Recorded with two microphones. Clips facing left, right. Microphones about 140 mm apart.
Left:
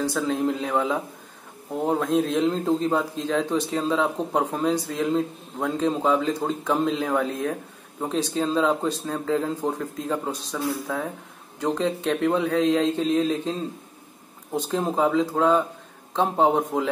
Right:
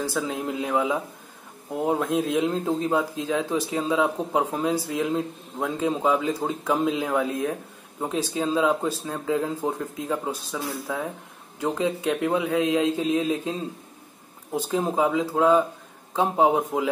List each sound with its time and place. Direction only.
0.0 s speech: 5° right (ahead or behind)